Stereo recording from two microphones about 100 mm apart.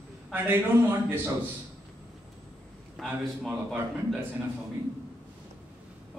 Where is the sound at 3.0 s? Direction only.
Centre (ahead or behind).